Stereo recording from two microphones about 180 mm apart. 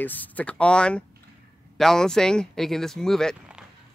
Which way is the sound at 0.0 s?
10° left (ahead or behind).